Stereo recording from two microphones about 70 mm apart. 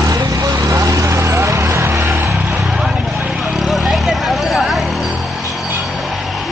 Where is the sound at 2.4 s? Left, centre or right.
Centre.